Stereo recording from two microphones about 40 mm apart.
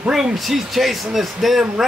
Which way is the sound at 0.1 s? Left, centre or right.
Centre.